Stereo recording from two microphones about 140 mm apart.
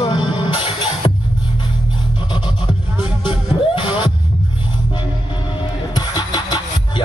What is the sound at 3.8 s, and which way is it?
Music, 35° left (ahead or behind).